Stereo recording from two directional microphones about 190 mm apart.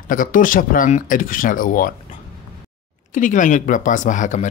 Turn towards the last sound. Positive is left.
turn(degrees=40)  # may be behind; listen again after turning